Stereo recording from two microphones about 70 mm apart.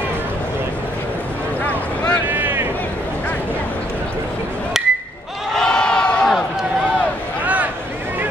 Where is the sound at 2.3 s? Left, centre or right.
Right.